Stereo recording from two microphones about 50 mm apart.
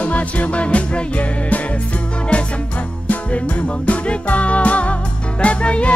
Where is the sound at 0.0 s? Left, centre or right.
Left.